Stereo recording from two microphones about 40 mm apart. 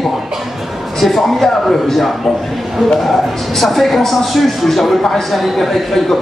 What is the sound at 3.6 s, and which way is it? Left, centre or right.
A man's voice, centre.